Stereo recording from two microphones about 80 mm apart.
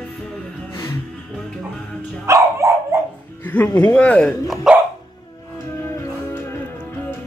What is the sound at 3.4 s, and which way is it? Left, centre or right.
Music, left.